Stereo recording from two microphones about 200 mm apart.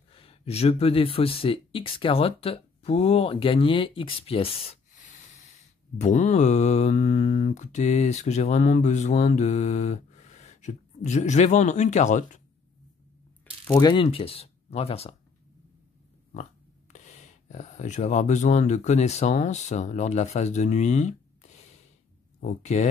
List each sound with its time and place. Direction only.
0.1 s speech: 30° left (ahead or behind)
13.7 s speech: 20° left (ahead or behind)
16.9 s speech: 35° left (ahead or behind)